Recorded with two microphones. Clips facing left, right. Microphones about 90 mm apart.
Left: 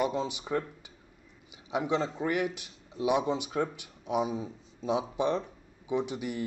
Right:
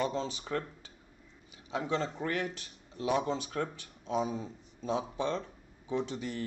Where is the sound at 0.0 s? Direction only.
15° left (ahead or behind).